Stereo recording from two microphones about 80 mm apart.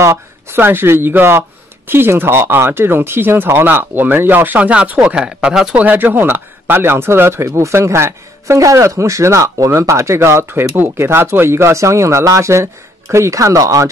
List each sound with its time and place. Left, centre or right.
0.0 s speech: right; by 5.8 s centre
5.8 s speech: right